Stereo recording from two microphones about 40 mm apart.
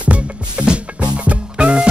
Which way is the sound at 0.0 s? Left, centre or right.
Right.